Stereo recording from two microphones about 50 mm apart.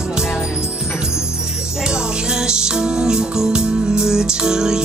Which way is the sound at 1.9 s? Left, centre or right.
Centre.